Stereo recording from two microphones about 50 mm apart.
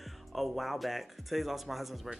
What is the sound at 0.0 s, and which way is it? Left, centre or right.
Speech, centre.